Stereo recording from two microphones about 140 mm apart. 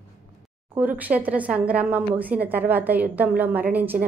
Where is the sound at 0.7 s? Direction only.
10° right (ahead or behind).